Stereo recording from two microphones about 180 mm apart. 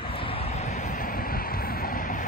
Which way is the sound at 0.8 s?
45° left (ahead or behind).